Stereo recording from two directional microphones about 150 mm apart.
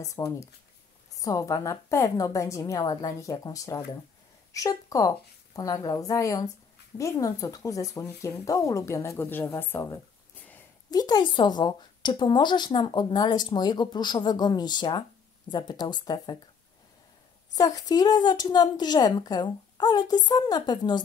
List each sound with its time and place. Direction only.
0.0 s speech: 20° left (ahead or behind)
10.9 s speech: 25° left (ahead or behind)
17.6 s speech: 25° left (ahead or behind)